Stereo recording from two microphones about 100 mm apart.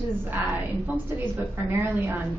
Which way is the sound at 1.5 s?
25° right (ahead or behind).